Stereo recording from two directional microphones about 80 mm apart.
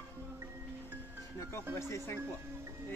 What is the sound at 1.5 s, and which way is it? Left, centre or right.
Speech, left.